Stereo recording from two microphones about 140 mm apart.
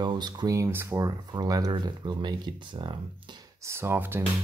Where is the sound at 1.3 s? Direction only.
30° right (ahead or behind).